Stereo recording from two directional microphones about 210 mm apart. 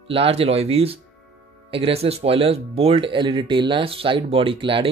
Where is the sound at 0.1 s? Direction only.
25° right (ahead or behind).